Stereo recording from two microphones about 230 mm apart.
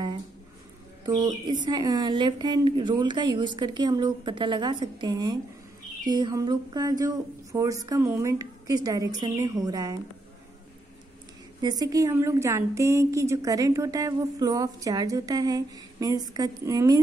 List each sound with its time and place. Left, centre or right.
1.0 s a woman's voice: centre
11.6 s a woman's voice: centre